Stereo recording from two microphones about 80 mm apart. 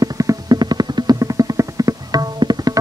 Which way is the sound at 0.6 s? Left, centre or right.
Right.